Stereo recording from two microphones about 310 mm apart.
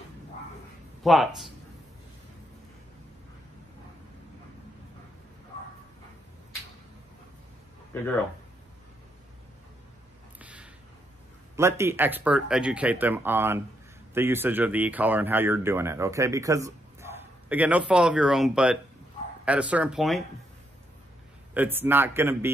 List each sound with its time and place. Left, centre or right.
1.0 s speech: centre
7.9 s speech: centre
10.4 s a sound: centre
11.5 s speech: centre
21.5 s speech: centre